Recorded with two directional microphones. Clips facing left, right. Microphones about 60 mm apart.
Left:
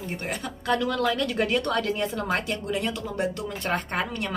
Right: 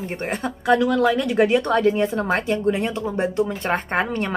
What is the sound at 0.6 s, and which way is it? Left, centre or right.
Speech, centre.